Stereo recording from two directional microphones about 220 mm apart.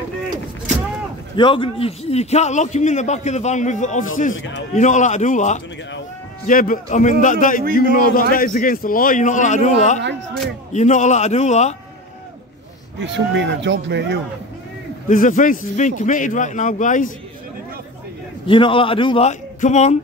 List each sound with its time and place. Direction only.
1.3 s a man's voice: 20° left (ahead or behind)
13.0 s speech: 55° right (ahead or behind)
15.0 s a man's voice: 35° left (ahead or behind)
18.5 s a man's voice: 25° left (ahead or behind)